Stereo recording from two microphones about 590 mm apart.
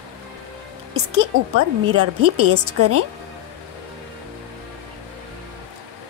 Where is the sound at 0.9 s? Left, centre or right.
Right.